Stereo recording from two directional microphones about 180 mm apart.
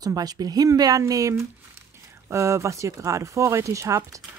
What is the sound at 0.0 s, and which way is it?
A woman's voice, 20° right (ahead or behind).